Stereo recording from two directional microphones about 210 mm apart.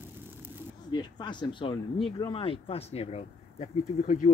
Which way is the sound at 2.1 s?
20° left (ahead or behind).